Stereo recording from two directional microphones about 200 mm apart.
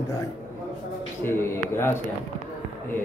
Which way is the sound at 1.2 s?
10° left (ahead or behind).